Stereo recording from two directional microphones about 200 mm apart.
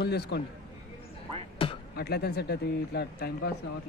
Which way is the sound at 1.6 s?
30° left (ahead or behind).